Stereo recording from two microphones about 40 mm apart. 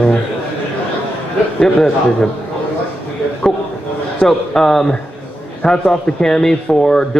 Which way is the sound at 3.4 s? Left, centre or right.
Centre.